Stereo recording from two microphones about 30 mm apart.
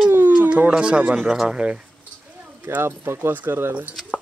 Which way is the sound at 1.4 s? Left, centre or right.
Right.